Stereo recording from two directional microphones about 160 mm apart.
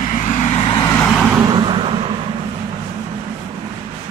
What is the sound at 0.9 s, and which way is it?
Vehicle, 5° left (ahead or behind).